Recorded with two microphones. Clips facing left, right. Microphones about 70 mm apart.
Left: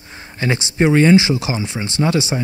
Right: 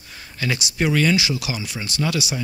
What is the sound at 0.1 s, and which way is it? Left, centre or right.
Speech, left.